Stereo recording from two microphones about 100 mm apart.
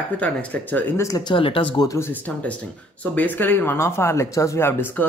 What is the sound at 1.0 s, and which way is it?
Speech, 40° left (ahead or behind).